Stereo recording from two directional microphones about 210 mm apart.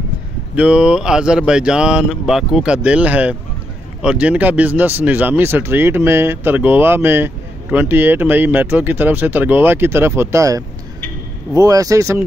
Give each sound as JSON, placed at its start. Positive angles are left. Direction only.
{"t": 0.6, "sound": "speech", "side_deg": -5}